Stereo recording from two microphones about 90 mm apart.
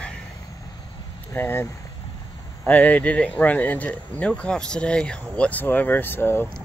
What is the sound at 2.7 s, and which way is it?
Speech, 15° left (ahead or behind).